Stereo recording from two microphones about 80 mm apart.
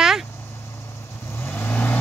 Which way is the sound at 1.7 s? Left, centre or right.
Left.